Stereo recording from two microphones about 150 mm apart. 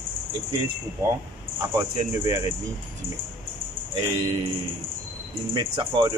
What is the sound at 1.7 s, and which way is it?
Speech, 20° right (ahead or behind).